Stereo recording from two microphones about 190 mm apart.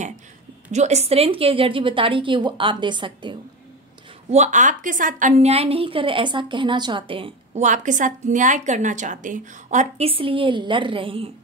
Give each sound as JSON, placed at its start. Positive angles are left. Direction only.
{"t": 0.7, "sound": "a woman's voice", "side_deg": -35}
{"t": 4.3, "sound": "a woman's voice", "side_deg": -40}